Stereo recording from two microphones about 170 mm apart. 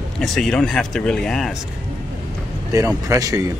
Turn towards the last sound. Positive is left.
turn(degrees=-20)  # may be behind; listen again after turning